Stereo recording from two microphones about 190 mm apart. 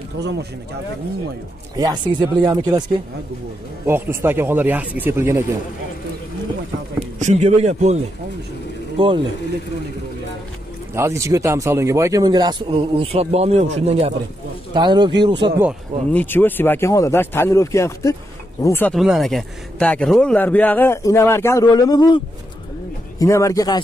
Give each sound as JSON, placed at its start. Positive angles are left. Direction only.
{"t": 0.2, "sound": "speech", "side_deg": -65}
{"t": 1.8, "sound": "speech", "side_deg": -20}
{"t": 3.8, "sound": "speech", "side_deg": -10}
{"t": 7.0, "sound": "a man's voice", "side_deg": -40}
{"t": 11.0, "sound": "speech", "side_deg": -15}
{"t": 12.7, "sound": "a man's voice", "side_deg": -35}
{"t": 14.7, "sound": "speech", "side_deg": -25}
{"t": 16.1, "sound": "a man's voice", "side_deg": 10}
{"t": 18.9, "sound": "a man's voice", "side_deg": 0}